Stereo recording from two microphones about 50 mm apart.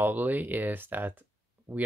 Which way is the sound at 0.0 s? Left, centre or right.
Right.